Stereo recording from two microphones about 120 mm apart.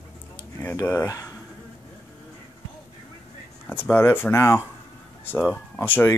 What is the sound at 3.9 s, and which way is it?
Speech, 20° left (ahead or behind).